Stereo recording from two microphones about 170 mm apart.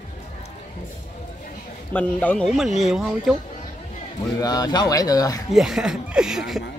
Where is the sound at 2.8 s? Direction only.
Centre (ahead or behind).